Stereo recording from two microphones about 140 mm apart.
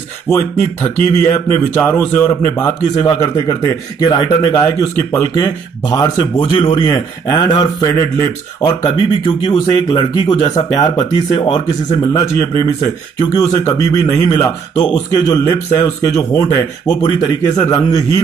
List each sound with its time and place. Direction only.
0.3 s speech: 15° left (ahead or behind)
6.5 s speech: 40° left (ahead or behind)
7.9 s speech: 15° left (ahead or behind)
9.2 s speech: 30° left (ahead or behind)
11.4 s speech: 45° left (ahead or behind)
12.0 s speech: 20° left (ahead or behind)